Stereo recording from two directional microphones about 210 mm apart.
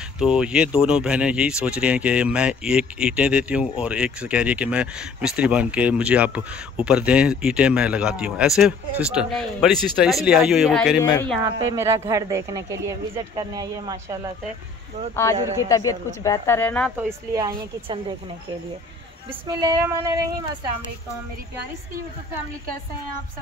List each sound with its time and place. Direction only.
0.2 s speech: 5° right (ahead or behind)
11.0 s speech: 15° left (ahead or behind)
11.4 s speech: 15° right (ahead or behind)
15.7 s speech: 15° left (ahead or behind)
17.3 s a woman's voice: 20° right (ahead or behind)
19.4 s speech: 20° right (ahead or behind)